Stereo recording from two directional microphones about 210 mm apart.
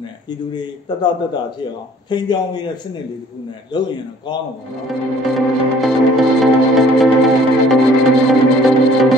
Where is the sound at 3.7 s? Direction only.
20° left (ahead or behind).